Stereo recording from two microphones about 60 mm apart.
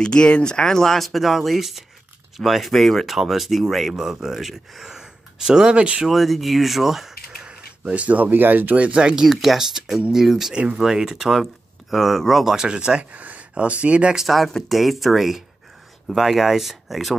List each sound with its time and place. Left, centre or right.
0.0 s speech: centre
5.8 s speech: centre
6.0 s speech: centre
7.9 s speech: right
9.2 s speech: centre
10.5 s speech: centre
12.6 s speech: centre
14.2 s speech: centre